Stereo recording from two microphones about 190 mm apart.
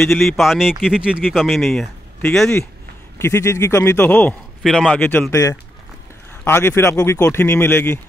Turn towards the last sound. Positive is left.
turn(degrees=10)  # may be behind; listen again after turning